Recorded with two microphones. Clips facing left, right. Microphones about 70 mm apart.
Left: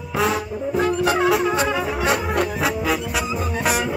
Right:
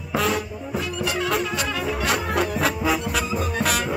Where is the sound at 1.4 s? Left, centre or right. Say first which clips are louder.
Left 5 dB; left.